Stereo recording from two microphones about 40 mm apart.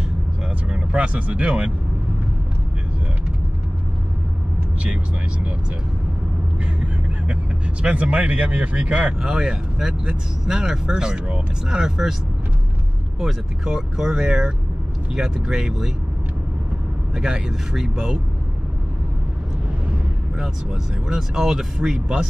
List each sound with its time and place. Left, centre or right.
0.7 s speech: right
6.6 s vehicle: right
7.8 s speech: right
9.2 s speech: centre
13.7 s speech: centre
17.1 s speech: centre
20.3 s speech: centre